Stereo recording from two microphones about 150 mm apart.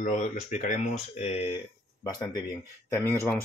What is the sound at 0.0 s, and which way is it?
Speech, 55° left (ahead or behind).